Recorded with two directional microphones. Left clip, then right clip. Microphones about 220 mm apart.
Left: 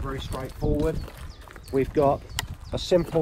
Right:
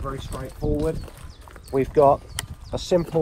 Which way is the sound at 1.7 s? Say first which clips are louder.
Right 5 dB; 25° right (ahead or behind).